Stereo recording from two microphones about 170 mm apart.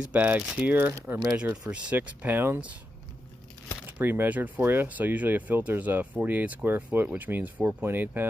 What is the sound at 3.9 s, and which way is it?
Speech, 10° right (ahead or behind).